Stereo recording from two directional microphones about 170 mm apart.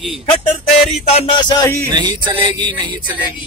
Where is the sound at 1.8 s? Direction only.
25° right (ahead or behind).